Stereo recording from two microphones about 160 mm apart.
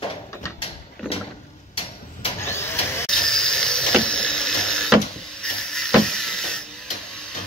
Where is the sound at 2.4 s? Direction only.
15° left (ahead or behind).